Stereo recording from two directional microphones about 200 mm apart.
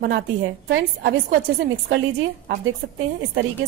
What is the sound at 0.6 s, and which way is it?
Speech, 60° right (ahead or behind).